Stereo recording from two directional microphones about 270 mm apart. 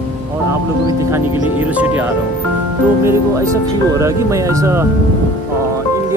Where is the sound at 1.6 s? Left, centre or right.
Centre.